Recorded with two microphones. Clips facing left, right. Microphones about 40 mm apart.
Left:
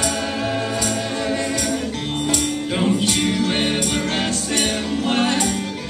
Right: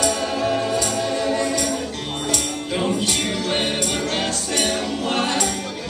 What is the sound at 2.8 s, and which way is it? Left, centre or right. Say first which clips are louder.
Music: left 3 dB; centre.